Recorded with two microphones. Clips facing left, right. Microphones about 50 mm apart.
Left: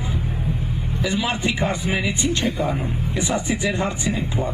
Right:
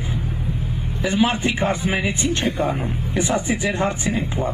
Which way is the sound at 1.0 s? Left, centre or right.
Right.